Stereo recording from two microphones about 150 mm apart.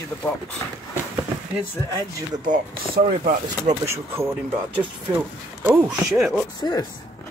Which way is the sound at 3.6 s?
20° right (ahead or behind).